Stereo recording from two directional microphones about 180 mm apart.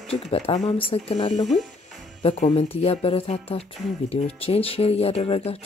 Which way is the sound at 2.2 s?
40° left (ahead or behind).